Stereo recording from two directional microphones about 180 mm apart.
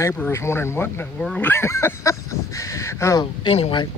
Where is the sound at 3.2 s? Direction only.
30° left (ahead or behind).